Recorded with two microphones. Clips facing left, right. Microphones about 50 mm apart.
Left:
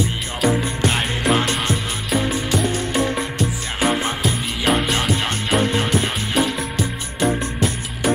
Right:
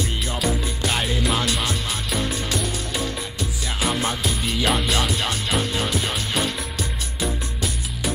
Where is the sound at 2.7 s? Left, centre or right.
Left.